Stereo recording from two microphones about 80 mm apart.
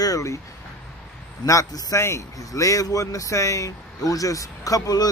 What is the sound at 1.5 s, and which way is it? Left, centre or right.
Speech, left.